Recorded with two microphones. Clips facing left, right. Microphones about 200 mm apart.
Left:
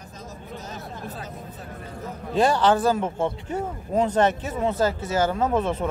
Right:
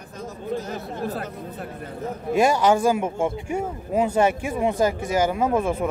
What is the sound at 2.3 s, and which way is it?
A man's voice, 10° right (ahead or behind).